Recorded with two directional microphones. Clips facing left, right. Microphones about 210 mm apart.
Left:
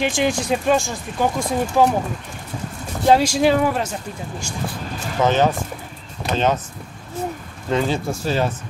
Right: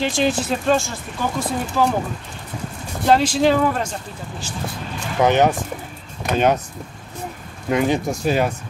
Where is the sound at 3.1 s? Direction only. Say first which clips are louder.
Left 1 dB; 10° left (ahead or behind).